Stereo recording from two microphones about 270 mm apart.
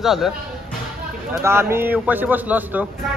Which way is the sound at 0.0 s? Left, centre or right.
Centre.